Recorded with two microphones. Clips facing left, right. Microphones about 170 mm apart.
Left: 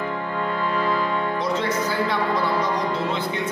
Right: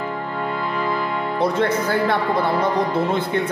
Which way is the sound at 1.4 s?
55° right (ahead or behind).